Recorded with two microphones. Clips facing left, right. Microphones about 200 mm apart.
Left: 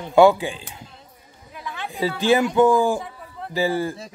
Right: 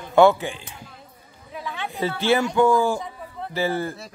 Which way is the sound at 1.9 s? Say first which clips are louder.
Left 2 dB; 15° left (ahead or behind).